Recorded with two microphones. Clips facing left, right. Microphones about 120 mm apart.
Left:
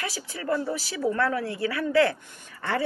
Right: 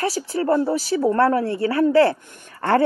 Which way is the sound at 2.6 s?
50° right (ahead or behind).